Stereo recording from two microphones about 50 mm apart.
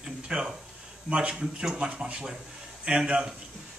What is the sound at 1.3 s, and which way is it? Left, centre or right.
Speech, centre.